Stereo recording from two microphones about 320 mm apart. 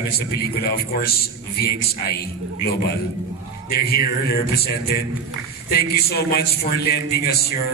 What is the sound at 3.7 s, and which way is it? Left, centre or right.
A man's voice, left.